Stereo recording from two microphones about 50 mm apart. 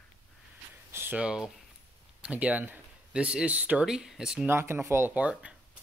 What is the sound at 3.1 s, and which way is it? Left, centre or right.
Speech, right.